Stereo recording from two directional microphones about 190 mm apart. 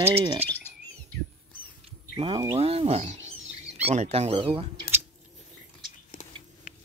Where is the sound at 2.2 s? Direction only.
25° right (ahead or behind).